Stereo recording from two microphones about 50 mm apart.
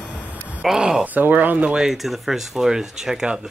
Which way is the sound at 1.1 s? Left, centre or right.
Right.